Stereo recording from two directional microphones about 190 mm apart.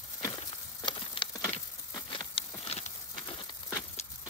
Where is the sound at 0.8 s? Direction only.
25° left (ahead or behind).